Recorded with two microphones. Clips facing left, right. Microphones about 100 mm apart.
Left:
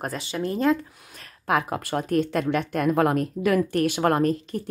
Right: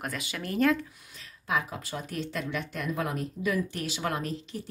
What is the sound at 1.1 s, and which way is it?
Speech, 60° left (ahead or behind).